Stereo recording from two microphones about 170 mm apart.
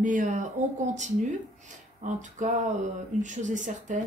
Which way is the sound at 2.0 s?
45° right (ahead or behind).